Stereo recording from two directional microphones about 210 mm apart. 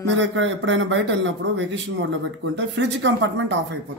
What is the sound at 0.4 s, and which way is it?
A man's voice, 60° right (ahead or behind).